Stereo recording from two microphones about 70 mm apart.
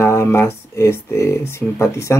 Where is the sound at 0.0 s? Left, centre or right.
Left.